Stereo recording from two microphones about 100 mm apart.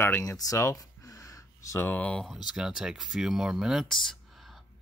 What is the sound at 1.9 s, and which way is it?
Speech, 10° left (ahead or behind).